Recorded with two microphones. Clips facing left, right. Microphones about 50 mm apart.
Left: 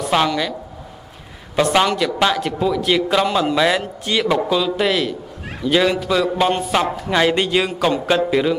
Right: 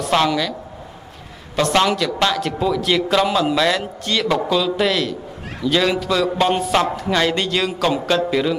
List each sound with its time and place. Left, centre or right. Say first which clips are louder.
0.0 s a sound: even; centre
1.6 s a man's voice: left 1 dB; centre
7.1 s a man's voice: left 2 dB; centre